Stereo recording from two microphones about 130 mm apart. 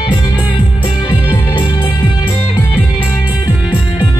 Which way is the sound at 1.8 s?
15° left (ahead or behind).